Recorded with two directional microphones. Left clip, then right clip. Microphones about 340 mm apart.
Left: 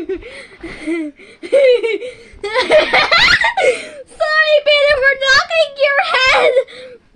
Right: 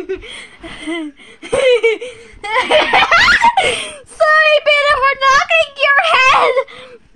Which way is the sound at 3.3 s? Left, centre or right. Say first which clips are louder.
Right 1 dB; centre.